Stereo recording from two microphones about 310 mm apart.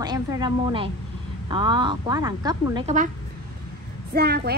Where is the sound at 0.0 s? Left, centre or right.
Centre.